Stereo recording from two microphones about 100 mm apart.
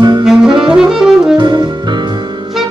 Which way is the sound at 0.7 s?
5° right (ahead or behind).